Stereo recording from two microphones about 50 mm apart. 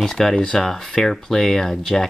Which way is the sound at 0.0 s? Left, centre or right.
Centre.